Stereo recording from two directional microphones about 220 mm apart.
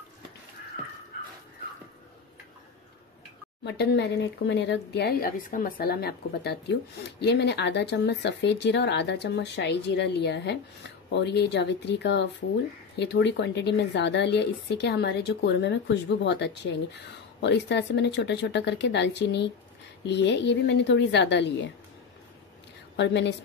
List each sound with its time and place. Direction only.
3.6 s speech: 50° left (ahead or behind)
22.9 s speech: 50° left (ahead or behind)